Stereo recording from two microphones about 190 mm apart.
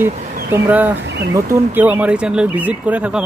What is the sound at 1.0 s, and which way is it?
Speech, 65° right (ahead or behind).